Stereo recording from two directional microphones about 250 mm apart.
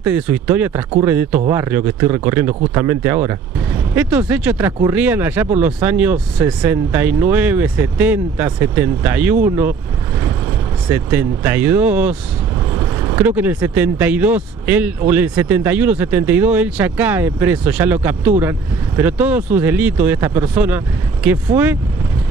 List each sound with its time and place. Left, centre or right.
0.0 s speech: centre
10.9 s speech: centre